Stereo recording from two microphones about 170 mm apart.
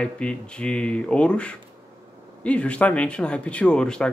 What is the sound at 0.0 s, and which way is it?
Speech, 5° left (ahead or behind).